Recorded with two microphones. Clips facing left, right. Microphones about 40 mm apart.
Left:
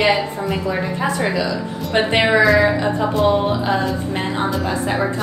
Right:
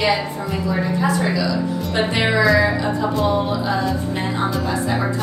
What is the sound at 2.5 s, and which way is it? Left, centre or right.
Speech, centre.